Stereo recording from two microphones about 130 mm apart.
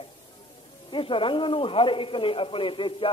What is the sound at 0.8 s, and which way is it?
A man's voice, 40° left (ahead or behind).